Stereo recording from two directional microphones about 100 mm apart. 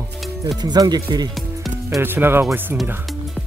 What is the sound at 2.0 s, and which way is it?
Speech, 20° right (ahead or behind).